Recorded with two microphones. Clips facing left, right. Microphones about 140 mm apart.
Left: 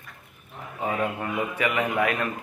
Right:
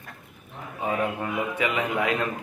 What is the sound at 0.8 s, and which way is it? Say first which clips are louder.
A man's voice: even; 15° right (ahead or behind).